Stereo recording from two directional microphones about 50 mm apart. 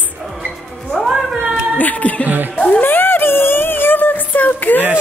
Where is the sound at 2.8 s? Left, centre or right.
Left.